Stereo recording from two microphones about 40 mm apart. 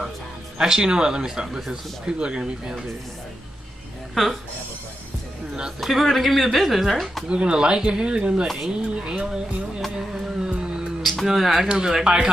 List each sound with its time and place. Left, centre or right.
0.6 s speech: centre
4.1 s speech: centre
5.8 s speech: centre
7.2 s speech: right
10.1 s music: right
11.0 s music: centre
11.2 s speech: centre
12.0 s speech: right